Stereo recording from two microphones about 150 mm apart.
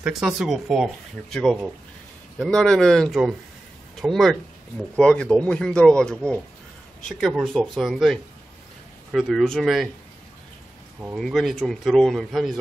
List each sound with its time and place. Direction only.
0.0 s speech: 5° right (ahead or behind)
11.1 s speech: centre (ahead or behind)